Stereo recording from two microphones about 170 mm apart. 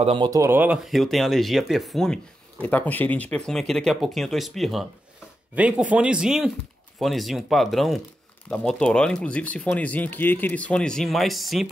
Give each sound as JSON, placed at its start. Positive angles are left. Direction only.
{"t": 0.0, "sound": "speech", "side_deg": -30}
{"t": 0.3, "sound": "speech", "side_deg": -15}